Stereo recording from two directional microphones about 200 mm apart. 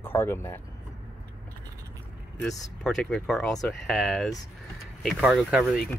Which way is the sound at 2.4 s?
Centre (ahead or behind).